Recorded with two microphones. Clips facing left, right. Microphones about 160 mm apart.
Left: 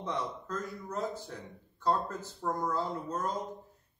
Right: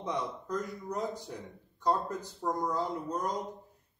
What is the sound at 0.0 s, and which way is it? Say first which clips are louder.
Speech: right 1 dB; 15° right (ahead or behind).